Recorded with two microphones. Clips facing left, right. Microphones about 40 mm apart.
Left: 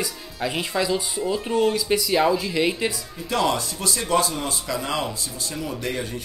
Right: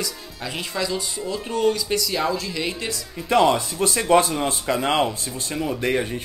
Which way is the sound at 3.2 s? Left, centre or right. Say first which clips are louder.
Right 5 dB; right.